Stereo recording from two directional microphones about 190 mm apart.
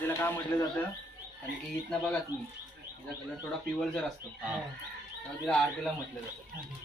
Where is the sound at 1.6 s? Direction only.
Centre (ahead or behind).